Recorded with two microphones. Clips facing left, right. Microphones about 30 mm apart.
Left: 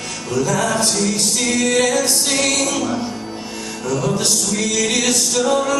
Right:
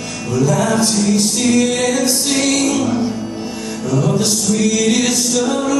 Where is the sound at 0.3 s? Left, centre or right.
Left.